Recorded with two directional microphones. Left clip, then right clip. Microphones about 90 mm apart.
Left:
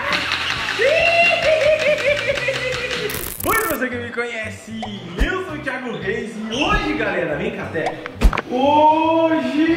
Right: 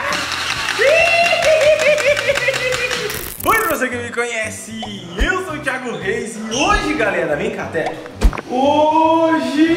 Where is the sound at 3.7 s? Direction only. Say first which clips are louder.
Right 3 dB; 20° right (ahead or behind).